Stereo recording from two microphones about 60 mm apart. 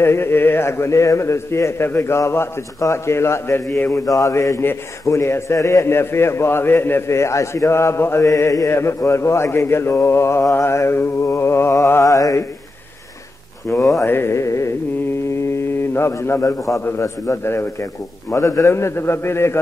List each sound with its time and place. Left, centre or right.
0.0 s a man's voice: left
3.9 s a man's voice: left
12.0 s mantra: left
13.7 s speech: left
14.0 s a man's voice: left
15.9 s a man's voice: left
18.3 s a man's voice: left